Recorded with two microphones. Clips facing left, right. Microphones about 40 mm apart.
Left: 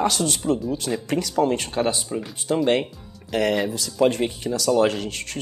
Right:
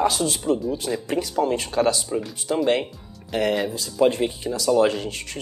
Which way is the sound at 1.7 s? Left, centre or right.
Left.